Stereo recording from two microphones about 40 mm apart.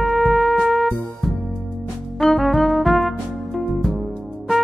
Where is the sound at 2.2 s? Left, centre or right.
Centre.